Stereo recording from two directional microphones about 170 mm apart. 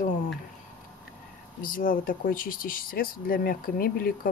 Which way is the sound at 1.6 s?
55° left (ahead or behind).